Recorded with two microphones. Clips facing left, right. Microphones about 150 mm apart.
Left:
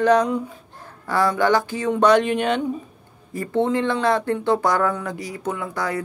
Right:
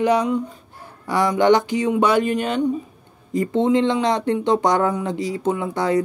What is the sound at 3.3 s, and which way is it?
Speech, 20° right (ahead or behind).